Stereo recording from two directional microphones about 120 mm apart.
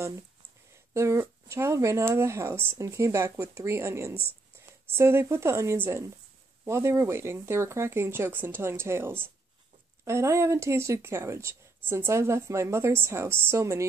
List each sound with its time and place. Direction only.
0.9 s speech: 25° right (ahead or behind)